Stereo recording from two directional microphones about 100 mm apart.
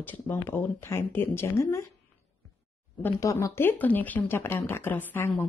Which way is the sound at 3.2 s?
35° left (ahead or behind).